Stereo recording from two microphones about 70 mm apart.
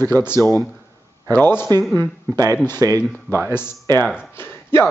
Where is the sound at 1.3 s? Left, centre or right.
Left.